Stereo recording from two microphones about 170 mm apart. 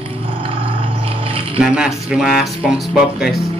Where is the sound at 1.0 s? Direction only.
35° right (ahead or behind).